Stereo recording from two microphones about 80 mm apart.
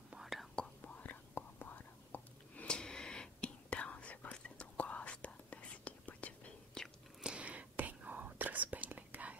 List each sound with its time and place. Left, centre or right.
0.2 s whispering: centre
0.6 s whispering: centre
7.2 s whispering: centre